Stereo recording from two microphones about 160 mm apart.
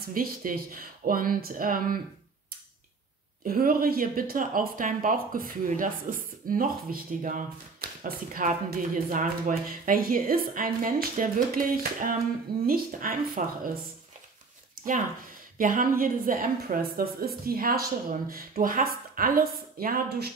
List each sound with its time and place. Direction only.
0.0 s speech: 60° right (ahead or behind)
3.4 s speech: 65° right (ahead or behind)
14.8 s speech: 55° right (ahead or behind)